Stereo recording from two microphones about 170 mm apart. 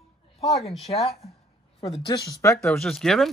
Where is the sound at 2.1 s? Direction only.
20° left (ahead or behind).